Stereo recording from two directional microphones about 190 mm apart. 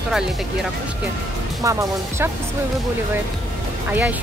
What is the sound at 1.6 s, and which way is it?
Speech, 15° right (ahead or behind).